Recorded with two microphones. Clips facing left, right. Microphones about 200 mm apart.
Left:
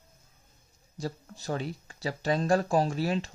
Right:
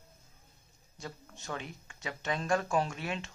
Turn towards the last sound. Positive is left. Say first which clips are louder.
# left 6 dB
turn(degrees=35)  # may be behind; listen again after turning